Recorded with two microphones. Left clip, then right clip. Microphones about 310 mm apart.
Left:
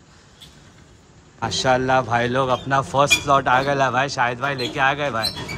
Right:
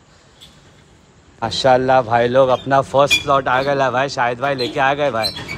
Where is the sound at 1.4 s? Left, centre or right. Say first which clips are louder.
Right 5 dB; centre.